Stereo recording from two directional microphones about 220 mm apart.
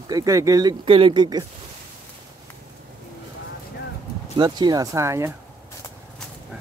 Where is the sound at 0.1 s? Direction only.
15° right (ahead or behind).